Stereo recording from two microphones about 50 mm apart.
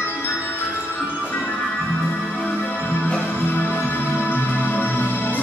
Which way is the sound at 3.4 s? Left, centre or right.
Left.